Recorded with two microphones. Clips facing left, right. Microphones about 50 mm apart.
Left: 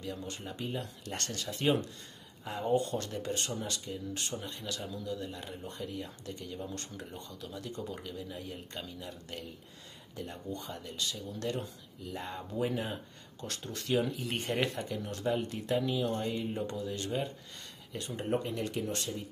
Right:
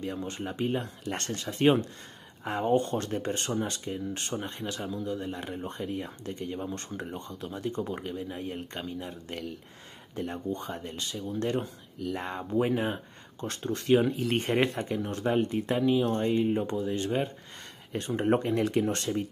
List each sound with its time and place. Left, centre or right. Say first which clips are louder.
0.0 s speech: right 6 dB; right